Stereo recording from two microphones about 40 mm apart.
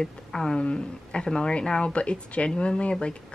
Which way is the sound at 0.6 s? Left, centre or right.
Left.